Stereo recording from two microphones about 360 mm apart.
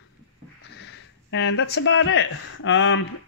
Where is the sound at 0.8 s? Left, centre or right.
Left.